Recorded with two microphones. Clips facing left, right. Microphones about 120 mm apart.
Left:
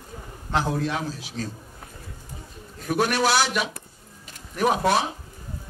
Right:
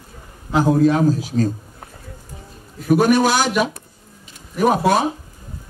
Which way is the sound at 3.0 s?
45° right (ahead or behind).